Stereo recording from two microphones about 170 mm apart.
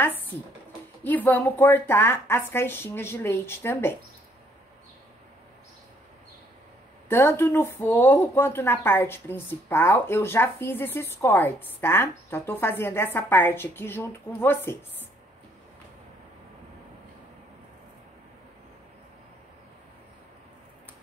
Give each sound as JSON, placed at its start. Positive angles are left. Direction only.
{"t": 1.0, "sound": "speech", "side_deg": 10}
{"t": 7.1, "sound": "speech", "side_deg": 15}